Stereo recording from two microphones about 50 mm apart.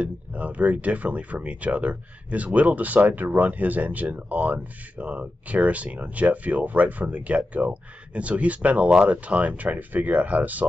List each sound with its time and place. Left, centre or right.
0.0 s speech: right